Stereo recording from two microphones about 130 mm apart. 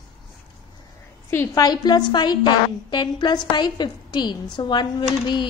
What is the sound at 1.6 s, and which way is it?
A woman's voice, 35° left (ahead or behind).